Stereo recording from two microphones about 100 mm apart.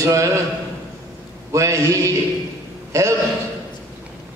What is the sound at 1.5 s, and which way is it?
A man's voice, 30° right (ahead or behind).